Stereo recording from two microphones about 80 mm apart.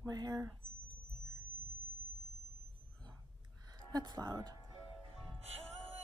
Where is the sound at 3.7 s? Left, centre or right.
Right.